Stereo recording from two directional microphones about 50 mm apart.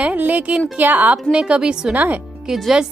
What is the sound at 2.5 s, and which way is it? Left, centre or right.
Speech, centre.